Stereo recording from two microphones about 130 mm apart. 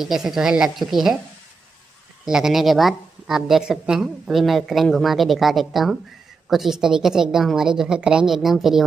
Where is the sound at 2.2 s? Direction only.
5° right (ahead or behind).